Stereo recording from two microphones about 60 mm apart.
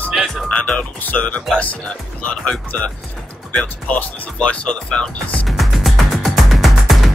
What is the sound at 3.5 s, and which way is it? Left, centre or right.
Speech, left.